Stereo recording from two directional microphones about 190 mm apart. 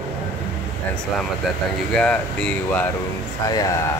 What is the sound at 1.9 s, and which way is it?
Speech, 5° left (ahead or behind).